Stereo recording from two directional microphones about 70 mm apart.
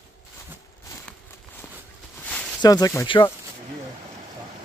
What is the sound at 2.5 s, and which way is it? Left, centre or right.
Speech, left.